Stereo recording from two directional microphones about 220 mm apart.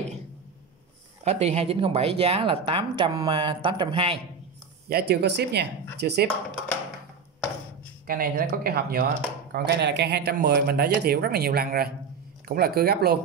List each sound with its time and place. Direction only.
1.2 s speech: 30° right (ahead or behind)
4.8 s speech: 45° right (ahead or behind)
8.1 s speech: 40° right (ahead or behind)